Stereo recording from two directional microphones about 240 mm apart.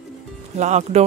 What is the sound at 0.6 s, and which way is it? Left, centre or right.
Speech, right.